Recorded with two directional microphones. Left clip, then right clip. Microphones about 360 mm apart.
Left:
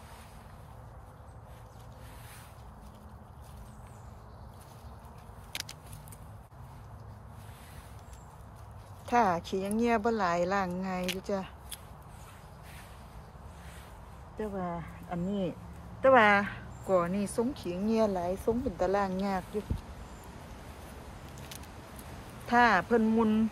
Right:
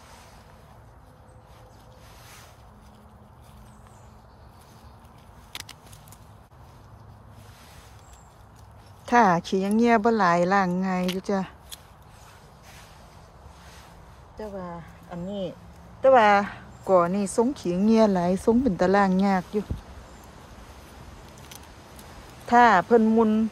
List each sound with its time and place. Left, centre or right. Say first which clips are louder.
5.5 s vehicle: right 1 dB; centre
9.0 s speech: right 8 dB; right
14.4 s speech: even; centre; by 19.4 s right
22.5 s speech: right 8 dB; centre